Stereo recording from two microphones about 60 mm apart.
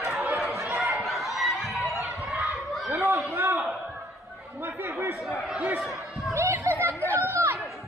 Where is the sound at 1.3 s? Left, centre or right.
Centre.